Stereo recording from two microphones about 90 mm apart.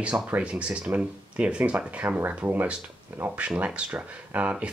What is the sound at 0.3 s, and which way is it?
Speech, 15° right (ahead or behind).